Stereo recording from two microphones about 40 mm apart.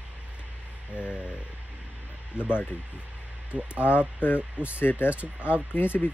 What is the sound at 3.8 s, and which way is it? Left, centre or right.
Speech, left.